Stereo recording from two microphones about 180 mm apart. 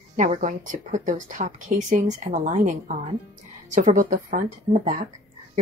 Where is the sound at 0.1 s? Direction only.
45° right (ahead or behind).